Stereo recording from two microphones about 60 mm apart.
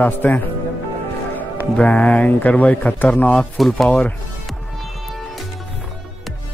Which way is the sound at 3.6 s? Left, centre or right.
Centre.